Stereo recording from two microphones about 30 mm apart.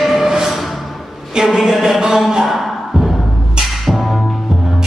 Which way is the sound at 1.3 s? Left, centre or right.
Right.